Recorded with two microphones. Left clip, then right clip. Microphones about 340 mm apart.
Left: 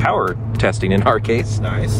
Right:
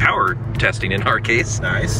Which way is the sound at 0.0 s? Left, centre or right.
Centre.